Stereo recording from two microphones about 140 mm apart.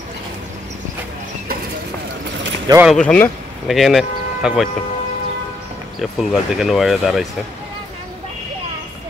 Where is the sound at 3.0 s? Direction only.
10° left (ahead or behind).